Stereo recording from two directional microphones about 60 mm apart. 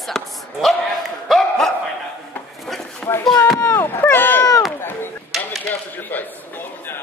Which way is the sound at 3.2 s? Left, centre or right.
Left.